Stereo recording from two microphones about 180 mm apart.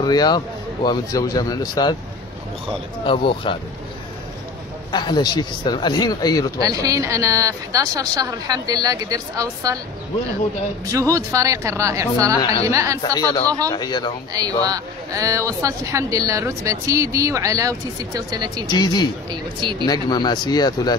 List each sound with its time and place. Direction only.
0.0 s speech: 25° left (ahead or behind)
3.1 s speech: 25° left (ahead or behind)
4.9 s speech: 25° left (ahead or behind)
6.6 s speech: 20° right (ahead or behind)
10.9 s speech: 20° right (ahead or behind)
13.2 s speech: 20° left (ahead or behind)
14.3 s speech: 20° right (ahead or behind)
18.7 s speech: 25° left (ahead or behind)